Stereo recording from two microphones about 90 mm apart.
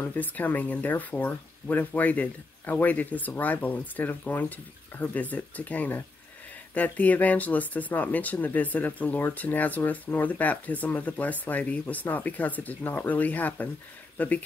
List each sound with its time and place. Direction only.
0.0 s speech: 20° left (ahead or behind)